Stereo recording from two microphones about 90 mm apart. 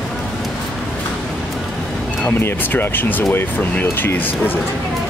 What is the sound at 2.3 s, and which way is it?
Speech, 25° left (ahead or behind).